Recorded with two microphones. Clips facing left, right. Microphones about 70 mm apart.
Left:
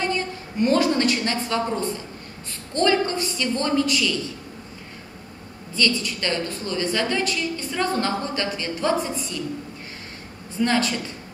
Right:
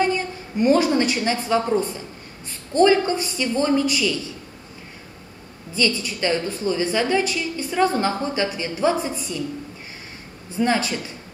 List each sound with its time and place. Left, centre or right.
0.0 s a woman's voice: centre
5.8 s a woman's voice: centre
10.6 s a woman's voice: centre